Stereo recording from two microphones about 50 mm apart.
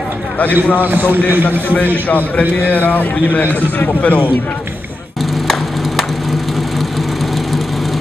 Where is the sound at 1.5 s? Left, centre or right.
Left.